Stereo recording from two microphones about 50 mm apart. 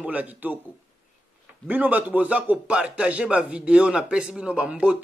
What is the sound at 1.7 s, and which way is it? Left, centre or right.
Speech, right.